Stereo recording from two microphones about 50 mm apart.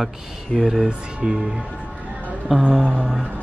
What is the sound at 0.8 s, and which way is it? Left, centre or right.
Speech, centre.